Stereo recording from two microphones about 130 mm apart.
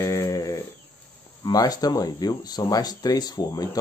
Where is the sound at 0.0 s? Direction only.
20° left (ahead or behind).